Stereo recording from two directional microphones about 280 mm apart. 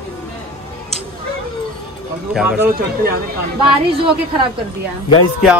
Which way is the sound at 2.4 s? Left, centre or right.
Centre.